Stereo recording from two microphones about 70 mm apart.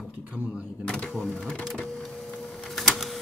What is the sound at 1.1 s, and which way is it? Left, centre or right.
Speech, centre.